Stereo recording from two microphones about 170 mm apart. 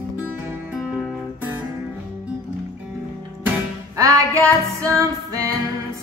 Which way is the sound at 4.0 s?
20° right (ahead or behind).